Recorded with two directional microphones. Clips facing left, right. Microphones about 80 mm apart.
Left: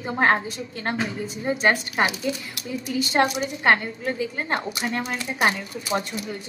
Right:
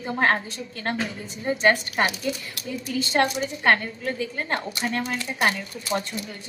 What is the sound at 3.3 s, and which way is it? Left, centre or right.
Speech, centre.